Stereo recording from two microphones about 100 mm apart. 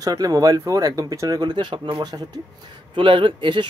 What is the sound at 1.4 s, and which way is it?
Speech, 55° right (ahead or behind).